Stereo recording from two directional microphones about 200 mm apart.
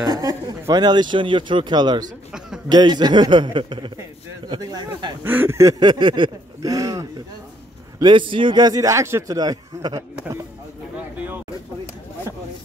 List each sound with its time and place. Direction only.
0.0 s a man's voice: 20° right (ahead or behind)
5.3 s a sound: 10° right (ahead or behind)
8.0 s a man's voice: 25° right (ahead or behind)